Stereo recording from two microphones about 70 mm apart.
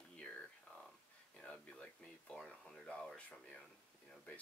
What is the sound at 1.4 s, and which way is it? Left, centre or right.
Speech, centre.